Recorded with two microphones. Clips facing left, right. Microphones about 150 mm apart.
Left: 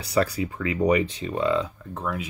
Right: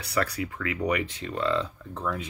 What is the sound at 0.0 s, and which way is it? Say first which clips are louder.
Speech: left 5 dB; 25° left (ahead or behind).